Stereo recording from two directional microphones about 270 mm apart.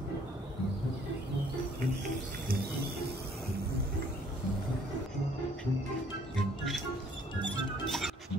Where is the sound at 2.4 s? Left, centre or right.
Right.